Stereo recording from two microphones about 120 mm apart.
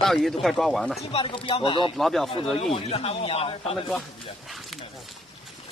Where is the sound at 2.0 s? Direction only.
Centre (ahead or behind).